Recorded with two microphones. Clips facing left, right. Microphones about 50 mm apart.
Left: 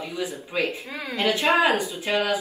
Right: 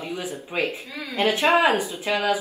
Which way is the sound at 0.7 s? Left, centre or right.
Left.